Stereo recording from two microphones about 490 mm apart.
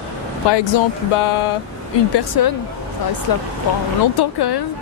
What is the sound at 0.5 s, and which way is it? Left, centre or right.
Speech, left.